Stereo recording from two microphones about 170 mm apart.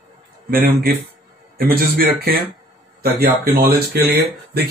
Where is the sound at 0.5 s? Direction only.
60° right (ahead or behind).